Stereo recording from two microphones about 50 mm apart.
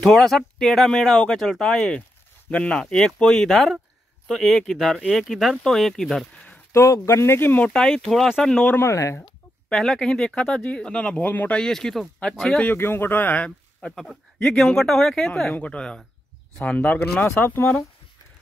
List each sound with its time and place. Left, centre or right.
0.0 s speech: centre
2.5 s speech: centre
5.6 s speech: centre
6.7 s speech: left
7.7 s speech: centre
8.7 s speech: left
9.7 s speech: centre
11.2 s speech: left
11.5 s speech: centre
12.7 s speech: left
13.9 s speech: centre
15.5 s speech: left